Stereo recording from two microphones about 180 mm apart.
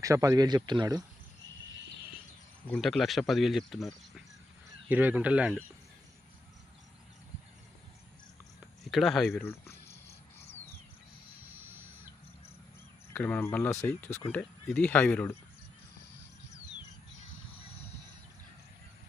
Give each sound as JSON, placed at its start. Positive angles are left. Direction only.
{"t": 0.0, "sound": "speech", "side_deg": -15}
{"t": 2.7, "sound": "speech", "side_deg": 0}
{"t": 8.9, "sound": "speech", "side_deg": 0}
{"t": 9.4, "sound": "cricket", "side_deg": 15}
{"t": 11.5, "sound": "a sound", "side_deg": -10}
{"t": 13.1, "sound": "speech", "side_deg": 10}